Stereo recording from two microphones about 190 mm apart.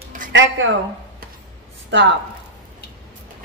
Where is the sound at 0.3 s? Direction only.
80° right.